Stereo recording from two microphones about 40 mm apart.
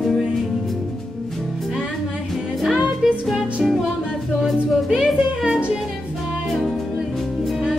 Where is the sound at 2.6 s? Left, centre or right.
Centre.